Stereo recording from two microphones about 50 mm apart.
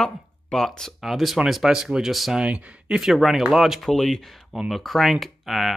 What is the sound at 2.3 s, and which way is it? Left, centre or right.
Speech, right.